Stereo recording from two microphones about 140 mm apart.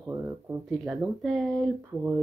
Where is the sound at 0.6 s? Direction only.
Centre (ahead or behind).